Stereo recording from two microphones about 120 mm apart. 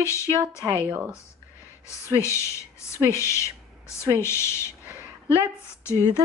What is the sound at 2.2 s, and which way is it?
Speech, 25° left (ahead or behind).